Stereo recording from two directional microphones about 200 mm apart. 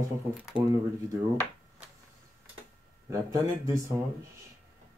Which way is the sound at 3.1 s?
15° right (ahead or behind).